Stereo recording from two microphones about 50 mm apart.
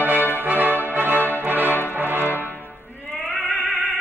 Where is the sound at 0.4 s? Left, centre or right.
Right.